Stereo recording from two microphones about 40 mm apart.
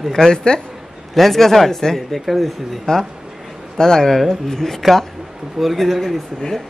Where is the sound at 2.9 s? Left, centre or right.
Centre.